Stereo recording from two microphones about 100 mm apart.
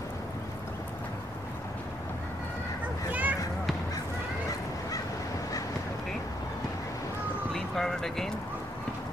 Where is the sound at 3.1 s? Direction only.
15° right (ahead or behind).